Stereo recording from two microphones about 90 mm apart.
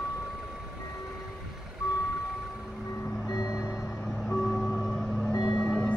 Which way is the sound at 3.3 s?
40° left (ahead or behind).